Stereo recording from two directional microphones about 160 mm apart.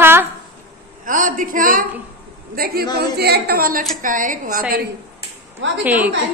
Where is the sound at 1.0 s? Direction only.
55° right (ahead or behind).